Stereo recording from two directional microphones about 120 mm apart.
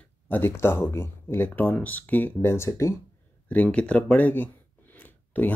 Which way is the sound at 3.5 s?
10° left (ahead or behind).